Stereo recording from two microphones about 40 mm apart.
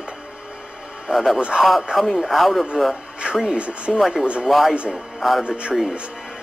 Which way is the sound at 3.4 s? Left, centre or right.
Right.